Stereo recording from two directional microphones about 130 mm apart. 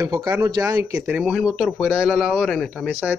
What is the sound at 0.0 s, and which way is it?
Speech, 25° right (ahead or behind).